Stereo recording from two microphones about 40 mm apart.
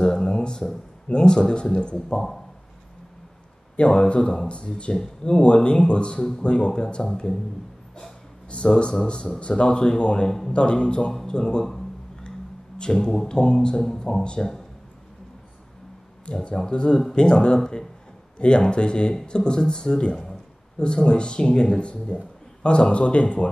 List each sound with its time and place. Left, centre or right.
0.0 s speech: centre
3.7 s speech: left
8.5 s speech: left
12.7 s speech: left
16.3 s speech: left